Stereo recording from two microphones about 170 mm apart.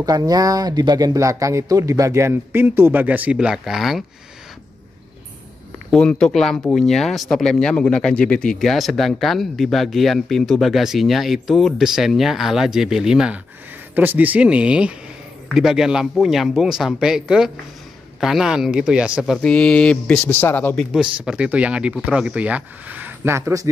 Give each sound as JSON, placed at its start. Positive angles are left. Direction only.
{"t": 0.0, "sound": "speech", "side_deg": -20}
{"t": 5.9, "sound": "speech", "side_deg": 5}
{"t": 20.9, "sound": "speech", "side_deg": -5}